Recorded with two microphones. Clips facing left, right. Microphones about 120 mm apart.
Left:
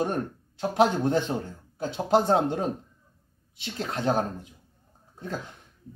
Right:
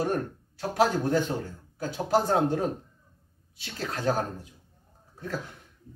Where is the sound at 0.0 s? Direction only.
20° left (ahead or behind).